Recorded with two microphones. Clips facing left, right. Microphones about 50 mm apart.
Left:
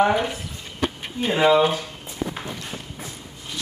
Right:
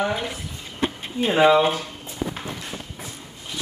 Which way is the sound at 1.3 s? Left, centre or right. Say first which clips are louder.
Right 1 dB; centre.